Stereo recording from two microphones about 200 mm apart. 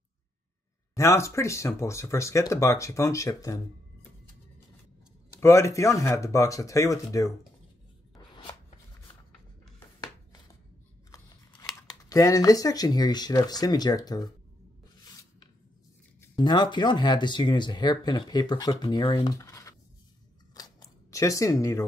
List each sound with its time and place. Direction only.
0.9 s speech: 15° left (ahead or behind)
5.3 s speech: 15° left (ahead or behind)
8.4 s shuffling cards: 25° left (ahead or behind)
12.1 s speech: 15° left (ahead or behind)
15.0 s rub: 20° left (ahead or behind)
16.2 s speech: 20° left (ahead or behind)
20.5 s scissors: 20° left (ahead or behind)